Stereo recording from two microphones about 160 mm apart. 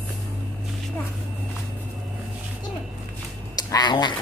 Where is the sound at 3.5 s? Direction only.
25° left (ahead or behind).